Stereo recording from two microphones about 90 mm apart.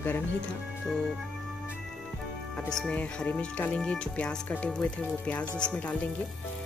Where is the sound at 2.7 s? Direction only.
5° left (ahead or behind).